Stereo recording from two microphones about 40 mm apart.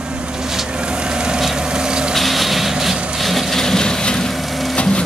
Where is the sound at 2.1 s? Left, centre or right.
Centre.